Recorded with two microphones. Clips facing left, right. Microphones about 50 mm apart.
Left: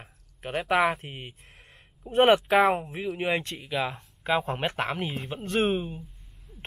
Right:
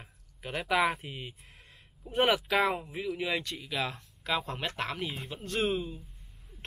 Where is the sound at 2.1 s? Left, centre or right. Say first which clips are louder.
Left 7 dB; left.